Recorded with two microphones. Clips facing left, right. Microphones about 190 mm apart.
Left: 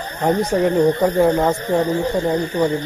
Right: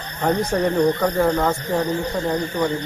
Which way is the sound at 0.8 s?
20° left (ahead or behind).